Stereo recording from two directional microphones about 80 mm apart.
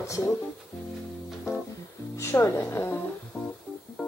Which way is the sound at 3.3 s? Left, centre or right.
Centre.